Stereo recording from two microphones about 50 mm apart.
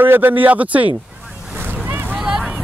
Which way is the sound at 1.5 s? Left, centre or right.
Right.